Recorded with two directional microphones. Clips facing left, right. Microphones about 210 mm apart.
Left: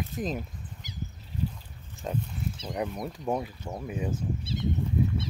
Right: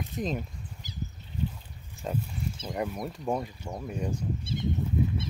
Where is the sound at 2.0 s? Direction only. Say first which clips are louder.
Even; centre (ahead or behind).